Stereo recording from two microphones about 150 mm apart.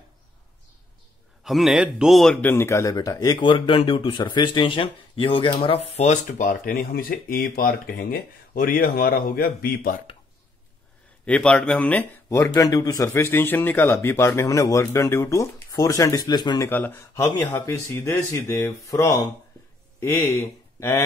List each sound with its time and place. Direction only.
1.4 s a man's voice: centre (ahead or behind)
2.4 s speech: 15° left (ahead or behind); by 9.9 s 80° left
11.2 s speech: 10° left (ahead or behind)
12.5 s speech: 20° left (ahead or behind)
16.6 s speech: 15° left (ahead or behind)